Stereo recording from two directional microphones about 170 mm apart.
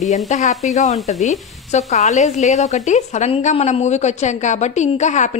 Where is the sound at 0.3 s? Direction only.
45° left (ahead or behind).